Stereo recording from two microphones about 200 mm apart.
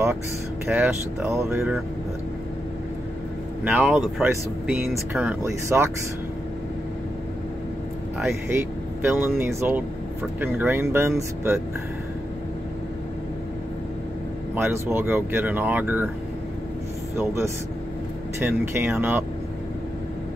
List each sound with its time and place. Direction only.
0.7 s speech: 5° right (ahead or behind)
3.6 s speech: 5° right (ahead or behind)
8.2 s speech: 10° right (ahead or behind)
14.5 s speech: 10° right (ahead or behind)
18.4 s speech: 10° right (ahead or behind)